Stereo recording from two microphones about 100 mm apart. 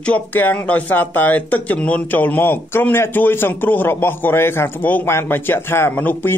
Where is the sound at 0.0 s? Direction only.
15° left (ahead or behind).